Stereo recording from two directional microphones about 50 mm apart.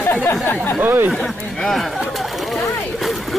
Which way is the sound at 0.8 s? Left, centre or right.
Right.